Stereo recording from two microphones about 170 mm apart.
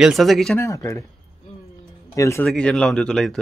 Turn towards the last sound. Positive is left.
turn(degrees=5)  # may be behind; listen again after turning